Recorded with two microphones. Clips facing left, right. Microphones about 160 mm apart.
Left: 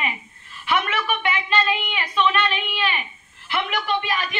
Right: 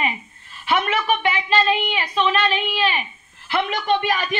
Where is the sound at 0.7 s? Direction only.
30° right (ahead or behind).